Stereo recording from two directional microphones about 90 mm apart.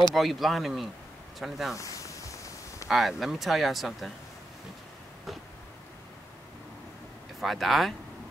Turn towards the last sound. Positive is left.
turn(degrees=0)  # may be behind; listen again after turning